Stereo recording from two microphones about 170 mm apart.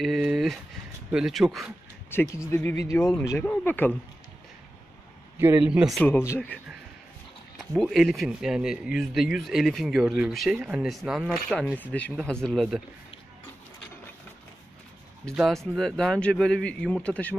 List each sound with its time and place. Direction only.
0.0 s speech: centre (ahead or behind)
2.3 s speech: 15° left (ahead or behind)
5.4 s speech: 10° right (ahead or behind)
5.9 s speech: 10° left (ahead or behind)
7.5 s speech: centre (ahead or behind)
15.3 s speech: centre (ahead or behind)